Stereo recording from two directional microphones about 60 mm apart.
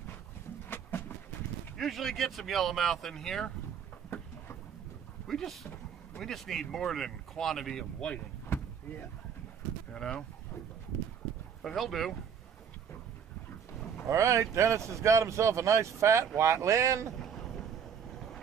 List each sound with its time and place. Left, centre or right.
0.7 s a sound: left
1.8 s speech: centre
5.2 s speech: centre
8.5 s vehicle: left
9.9 s speech: centre
11.6 s speech: centre
14.0 s speech: right
17.2 s boat: centre